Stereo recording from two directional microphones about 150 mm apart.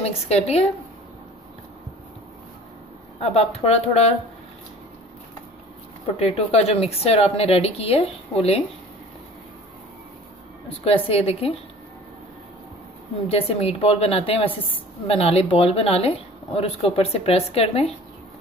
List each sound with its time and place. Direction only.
0.0 s a woman's voice: 45° left (ahead or behind)
3.2 s a woman's voice: 45° left (ahead or behind)
6.1 s a woman's voice: 45° left (ahead or behind)
10.8 s a woman's voice: 40° left (ahead or behind)
13.3 s a woman's voice: 40° left (ahead or behind)